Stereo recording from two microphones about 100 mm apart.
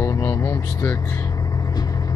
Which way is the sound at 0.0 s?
35° left (ahead or behind).